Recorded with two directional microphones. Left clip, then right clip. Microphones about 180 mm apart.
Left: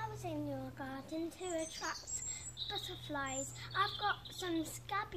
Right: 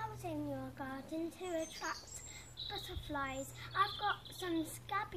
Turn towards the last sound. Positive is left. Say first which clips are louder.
# even
turn(degrees=5)  # may be behind; listen again after turning